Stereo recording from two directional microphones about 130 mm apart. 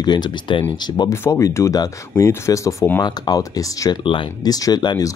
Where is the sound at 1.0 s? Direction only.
20° left (ahead or behind).